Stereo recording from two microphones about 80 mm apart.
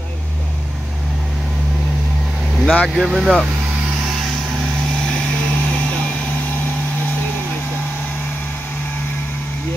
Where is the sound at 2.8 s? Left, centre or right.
Centre.